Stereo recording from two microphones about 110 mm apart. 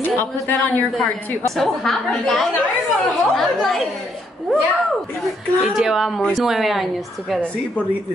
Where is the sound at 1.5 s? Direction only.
Centre (ahead or behind).